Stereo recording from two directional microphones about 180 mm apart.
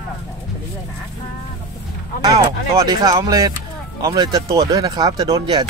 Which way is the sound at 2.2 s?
20° right (ahead or behind).